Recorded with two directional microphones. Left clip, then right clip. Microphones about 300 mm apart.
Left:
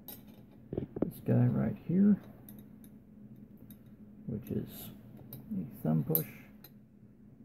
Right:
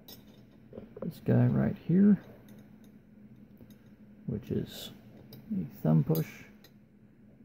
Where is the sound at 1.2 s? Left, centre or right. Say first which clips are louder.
Right 5 dB; centre.